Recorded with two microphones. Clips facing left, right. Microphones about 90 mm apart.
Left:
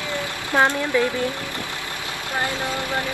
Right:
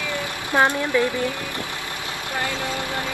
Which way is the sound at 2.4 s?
20° left (ahead or behind).